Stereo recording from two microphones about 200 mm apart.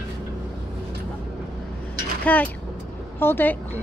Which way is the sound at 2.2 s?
10° left (ahead or behind).